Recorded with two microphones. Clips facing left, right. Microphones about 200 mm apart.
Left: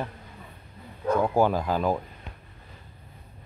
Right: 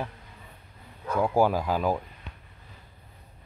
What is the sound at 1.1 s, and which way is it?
Speech, 10° right (ahead or behind).